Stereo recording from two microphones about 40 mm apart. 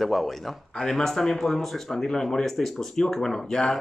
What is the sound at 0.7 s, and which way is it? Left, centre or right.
Speech, centre.